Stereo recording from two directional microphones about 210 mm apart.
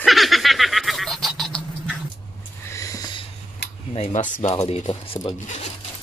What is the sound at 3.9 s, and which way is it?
Speech, 30° left (ahead or behind).